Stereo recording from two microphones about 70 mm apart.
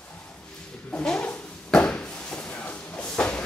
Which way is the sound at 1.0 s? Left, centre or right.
Centre.